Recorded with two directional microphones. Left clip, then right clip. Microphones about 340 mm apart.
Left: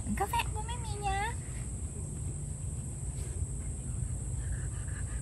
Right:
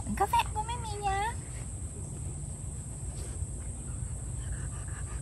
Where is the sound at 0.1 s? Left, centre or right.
Centre.